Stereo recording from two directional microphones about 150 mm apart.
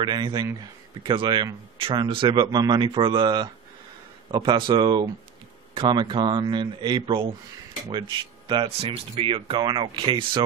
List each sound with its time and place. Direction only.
0.0 s speech: 30° right (ahead or behind)